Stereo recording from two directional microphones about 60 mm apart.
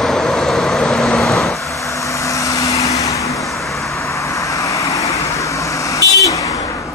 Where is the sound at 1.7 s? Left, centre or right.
Left.